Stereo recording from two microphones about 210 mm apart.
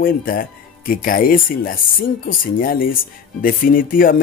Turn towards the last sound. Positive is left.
turn(degrees=40)  # may be behind; listen again after turning